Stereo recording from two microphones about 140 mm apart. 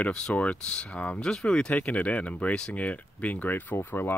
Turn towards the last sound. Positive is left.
turn(degrees=15)  # may be behind; listen again after turning